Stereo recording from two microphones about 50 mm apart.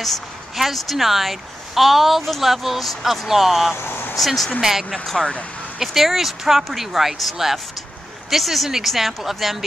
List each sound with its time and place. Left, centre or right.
0.0 s speech: centre
3.7 s speech: left
4.2 s speech: centre